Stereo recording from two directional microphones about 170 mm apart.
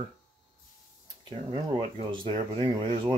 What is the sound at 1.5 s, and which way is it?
Speech, 35° right (ahead or behind).